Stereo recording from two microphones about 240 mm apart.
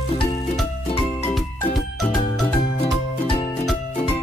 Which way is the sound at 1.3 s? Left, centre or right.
Centre.